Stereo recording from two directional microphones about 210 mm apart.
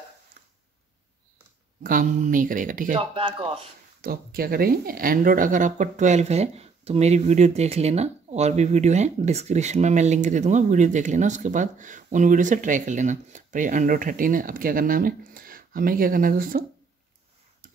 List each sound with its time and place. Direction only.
1.8 s speech: 40° right (ahead or behind)
3.0 s speech: 25° right (ahead or behind)
4.0 s speech: 45° right (ahead or behind)